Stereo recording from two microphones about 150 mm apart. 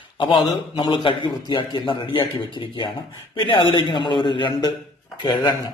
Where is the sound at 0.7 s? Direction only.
30° left (ahead or behind).